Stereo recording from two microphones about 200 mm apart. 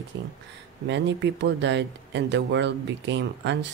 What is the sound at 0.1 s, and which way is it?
Speech, 70° right (ahead or behind).